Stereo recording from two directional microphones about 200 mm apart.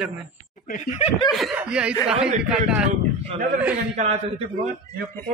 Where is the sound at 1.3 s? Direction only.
Centre (ahead or behind).